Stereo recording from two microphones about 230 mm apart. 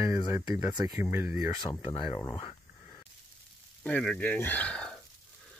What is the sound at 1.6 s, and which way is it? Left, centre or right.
Speech, centre.